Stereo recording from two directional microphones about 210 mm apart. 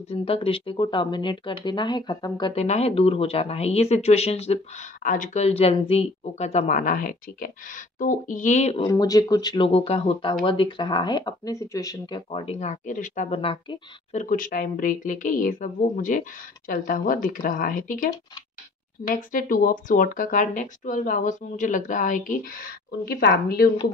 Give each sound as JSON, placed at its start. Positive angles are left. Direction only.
{"t": 0.1, "sound": "speech", "side_deg": 25}
{"t": 8.8, "sound": "speech", "side_deg": 15}
{"t": 14.2, "sound": "speech", "side_deg": 40}